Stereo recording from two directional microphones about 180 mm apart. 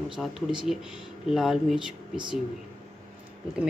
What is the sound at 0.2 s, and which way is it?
Speech, centre (ahead or behind).